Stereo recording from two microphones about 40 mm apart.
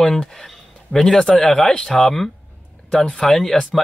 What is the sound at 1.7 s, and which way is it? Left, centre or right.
Speech, centre.